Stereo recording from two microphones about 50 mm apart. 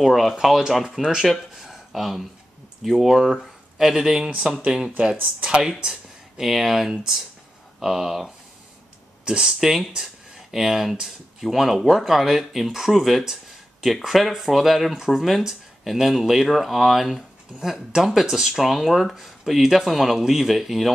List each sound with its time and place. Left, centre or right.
0.0 s speech: centre